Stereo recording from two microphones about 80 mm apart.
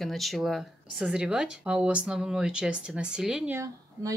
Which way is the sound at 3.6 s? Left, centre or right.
Right.